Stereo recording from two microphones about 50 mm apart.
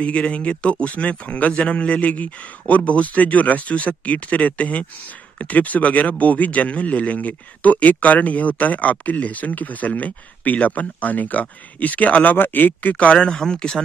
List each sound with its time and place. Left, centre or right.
0.0 s speech: left
12.9 s speech: left